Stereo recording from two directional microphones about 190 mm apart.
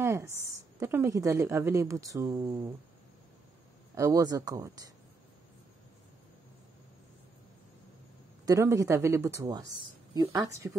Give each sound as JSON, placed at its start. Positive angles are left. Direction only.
{"t": 0.0, "sound": "a woman's voice", "side_deg": -15}
{"t": 3.9, "sound": "a woman's voice", "side_deg": -15}
{"t": 8.5, "sound": "a woman's voice", "side_deg": -15}